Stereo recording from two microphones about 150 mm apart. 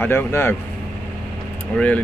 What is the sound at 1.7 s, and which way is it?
Speech, 10° left (ahead or behind).